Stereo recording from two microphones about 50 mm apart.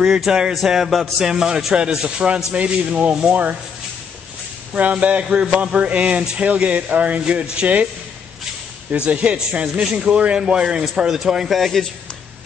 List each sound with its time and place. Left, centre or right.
0.0 s speech: centre
4.7 s speech: right
8.9 s a man's voice: right; by 11.8 s centre